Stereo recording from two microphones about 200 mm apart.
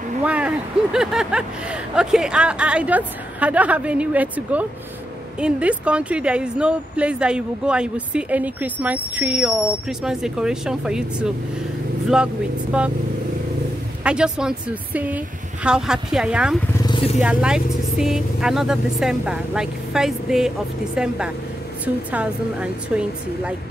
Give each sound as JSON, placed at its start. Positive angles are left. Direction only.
{"t": 0.2, "sound": "speech", "side_deg": -5}
{"t": 12.7, "sound": "speech", "side_deg": -5}
{"t": 14.0, "sound": "speech", "side_deg": -5}
{"t": 16.8, "sound": "vehicle", "side_deg": 25}
{"t": 17.2, "sound": "speech", "side_deg": -5}